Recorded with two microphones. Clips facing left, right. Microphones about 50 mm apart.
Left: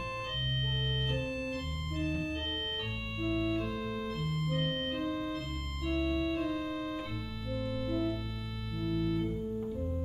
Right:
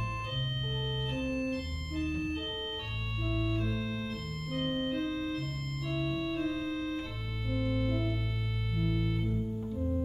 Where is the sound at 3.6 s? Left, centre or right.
Centre.